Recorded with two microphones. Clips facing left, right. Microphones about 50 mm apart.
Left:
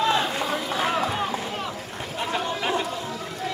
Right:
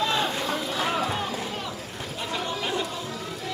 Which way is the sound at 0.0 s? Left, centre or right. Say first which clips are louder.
Left 3 dB; centre.